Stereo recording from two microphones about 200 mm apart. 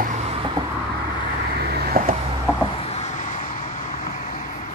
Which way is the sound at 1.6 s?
50° right (ahead or behind).